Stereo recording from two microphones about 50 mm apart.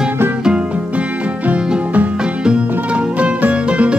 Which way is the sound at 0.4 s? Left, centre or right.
Centre.